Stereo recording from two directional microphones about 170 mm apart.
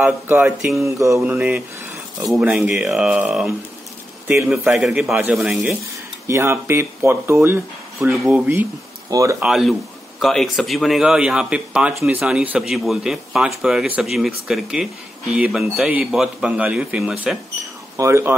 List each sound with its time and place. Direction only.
0.0 s speech: 10° right (ahead or behind)
0.7 s a man's voice: 15° right (ahead or behind)
9.4 s a man's voice: centre (ahead or behind)
17.9 s speech: 15° right (ahead or behind)